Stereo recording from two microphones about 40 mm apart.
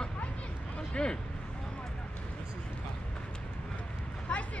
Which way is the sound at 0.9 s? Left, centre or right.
Left.